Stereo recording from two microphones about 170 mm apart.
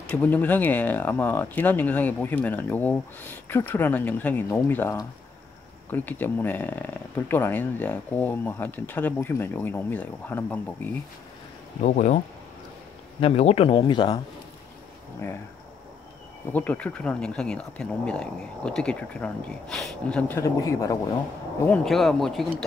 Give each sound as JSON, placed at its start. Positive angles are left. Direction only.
{"t": 0.0, "sound": "speech", "side_deg": 10}
{"t": 11.8, "sound": "speech", "side_deg": 45}
{"t": 13.2, "sound": "speech", "side_deg": 35}
{"t": 16.5, "sound": "speech", "side_deg": 10}
{"t": 21.6, "sound": "speech", "side_deg": 0}